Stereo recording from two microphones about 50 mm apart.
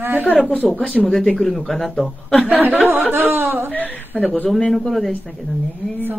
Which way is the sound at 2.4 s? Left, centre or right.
Right.